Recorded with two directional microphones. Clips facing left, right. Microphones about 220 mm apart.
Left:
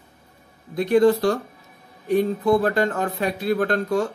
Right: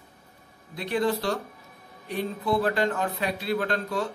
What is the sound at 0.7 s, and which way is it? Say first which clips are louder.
Speech: left 10 dB; 45° left (ahead or behind).